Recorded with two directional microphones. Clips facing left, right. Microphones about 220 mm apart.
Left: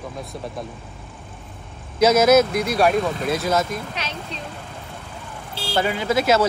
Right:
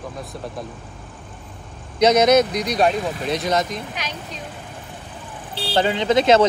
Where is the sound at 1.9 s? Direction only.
5° left (ahead or behind).